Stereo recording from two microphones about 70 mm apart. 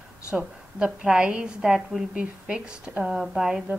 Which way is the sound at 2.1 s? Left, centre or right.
Centre.